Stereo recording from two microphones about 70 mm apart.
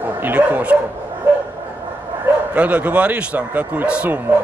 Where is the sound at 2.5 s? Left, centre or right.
Right.